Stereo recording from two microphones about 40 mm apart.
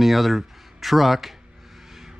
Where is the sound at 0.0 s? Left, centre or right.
Centre.